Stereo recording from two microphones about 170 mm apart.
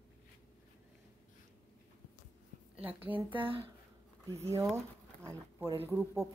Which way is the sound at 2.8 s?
10° right (ahead or behind).